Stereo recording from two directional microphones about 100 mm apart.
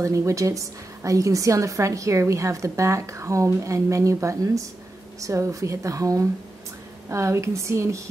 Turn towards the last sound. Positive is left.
turn(degrees=-30)  # may be behind; listen again after turning